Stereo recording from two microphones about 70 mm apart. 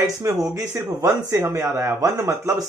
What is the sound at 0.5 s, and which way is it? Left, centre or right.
Speech, right.